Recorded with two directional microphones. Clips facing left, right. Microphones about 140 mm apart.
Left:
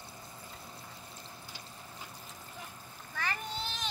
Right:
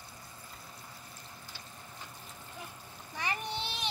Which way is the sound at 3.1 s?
15° right (ahead or behind).